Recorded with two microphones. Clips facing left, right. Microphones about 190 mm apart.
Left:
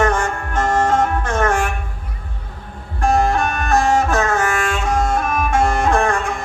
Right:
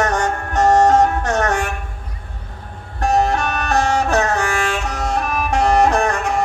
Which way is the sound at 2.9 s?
40° right (ahead or behind).